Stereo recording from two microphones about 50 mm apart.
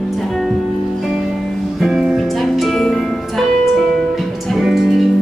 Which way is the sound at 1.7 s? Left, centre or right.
Centre.